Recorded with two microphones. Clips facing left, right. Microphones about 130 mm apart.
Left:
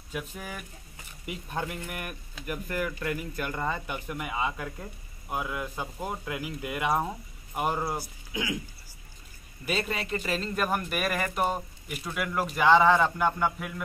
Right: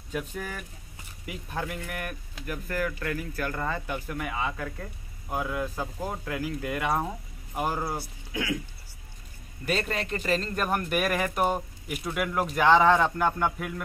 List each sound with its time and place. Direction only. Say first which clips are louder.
0.1 s speech: right 3 dB; 5° left (ahead or behind)
1.2 s speech: even; 20° left (ahead or behind)
7.7 s speech: even; 5° left (ahead or behind)
8.3 s speech: right 2 dB; 20° left (ahead or behind)
9.7 s speech: right 1 dB; 10° left (ahead or behind)